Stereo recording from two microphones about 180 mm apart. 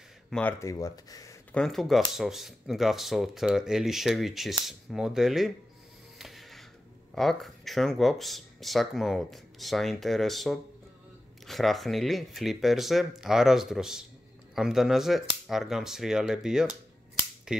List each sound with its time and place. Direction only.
0.3 s speech: 10° left (ahead or behind)
1.5 s speech: 5° left (ahead or behind)
6.1 s music: centre (ahead or behind)
7.2 s speech: centre (ahead or behind)